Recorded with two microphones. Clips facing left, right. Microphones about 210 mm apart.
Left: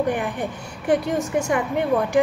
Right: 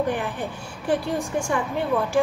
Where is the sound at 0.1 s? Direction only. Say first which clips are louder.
Left 2 dB; 15° left (ahead or behind).